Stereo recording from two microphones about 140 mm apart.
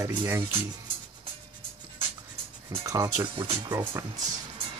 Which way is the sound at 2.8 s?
25° right (ahead or behind).